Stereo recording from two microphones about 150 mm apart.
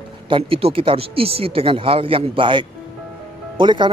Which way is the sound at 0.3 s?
40° right (ahead or behind).